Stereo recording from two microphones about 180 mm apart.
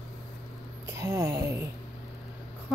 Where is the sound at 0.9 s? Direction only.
15° right (ahead or behind).